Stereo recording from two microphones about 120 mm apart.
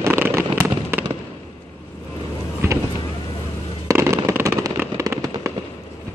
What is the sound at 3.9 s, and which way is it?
Fireworks, 25° right (ahead or behind).